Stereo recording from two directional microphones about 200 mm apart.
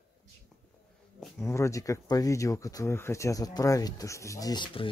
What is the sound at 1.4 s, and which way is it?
Speech, 15° left (ahead or behind).